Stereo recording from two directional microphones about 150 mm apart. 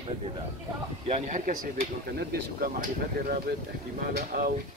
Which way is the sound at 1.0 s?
55° right (ahead or behind).